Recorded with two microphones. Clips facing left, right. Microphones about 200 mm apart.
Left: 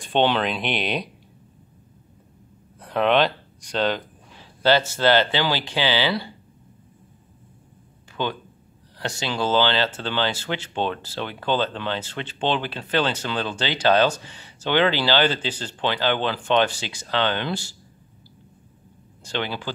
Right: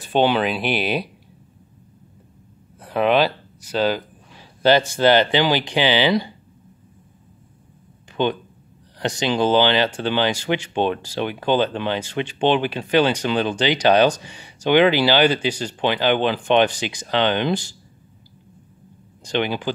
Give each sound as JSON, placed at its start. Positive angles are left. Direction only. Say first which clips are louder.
{"t": 0.0, "sound": "speech", "louder": "right 3 dB", "side_deg": -5}
{"t": 2.8, "sound": "speech", "louder": "right 2 dB", "side_deg": -5}
{"t": 8.2, "sound": "speech", "louder": "right 6 dB", "side_deg": -20}
{"t": 19.2, "sound": "speech", "louder": "right 6 dB", "side_deg": -15}